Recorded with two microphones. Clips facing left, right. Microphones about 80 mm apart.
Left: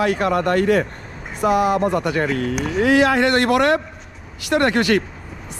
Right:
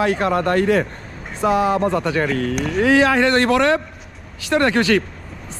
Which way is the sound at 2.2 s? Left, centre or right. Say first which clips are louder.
Right 1 dB; right.